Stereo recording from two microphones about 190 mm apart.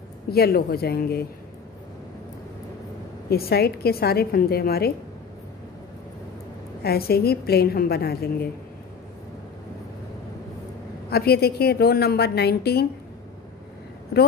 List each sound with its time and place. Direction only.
0.3 s a woman's voice: 55° left (ahead or behind)
3.3 s a woman's voice: 55° left (ahead or behind)
6.8 s a woman's voice: 55° left (ahead or behind)
11.1 s a woman's voice: 55° left (ahead or behind)